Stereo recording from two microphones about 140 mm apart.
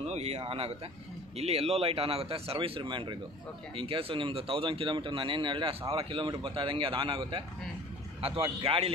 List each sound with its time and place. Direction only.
0.0 s a man's voice: 50° right (ahead or behind)